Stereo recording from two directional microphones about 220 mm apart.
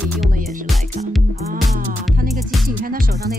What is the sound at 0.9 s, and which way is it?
Speech, 35° right (ahead or behind).